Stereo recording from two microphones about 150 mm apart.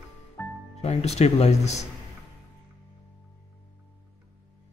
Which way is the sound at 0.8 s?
45° left (ahead or behind).